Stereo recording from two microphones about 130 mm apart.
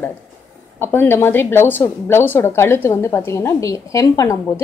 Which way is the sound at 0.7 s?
15° left (ahead or behind).